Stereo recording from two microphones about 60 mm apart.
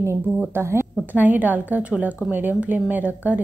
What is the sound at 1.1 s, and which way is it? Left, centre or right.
Speech, right.